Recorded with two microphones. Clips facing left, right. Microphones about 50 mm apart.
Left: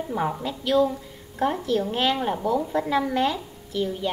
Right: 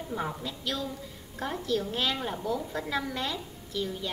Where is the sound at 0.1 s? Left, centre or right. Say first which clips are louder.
Left 6 dB; left.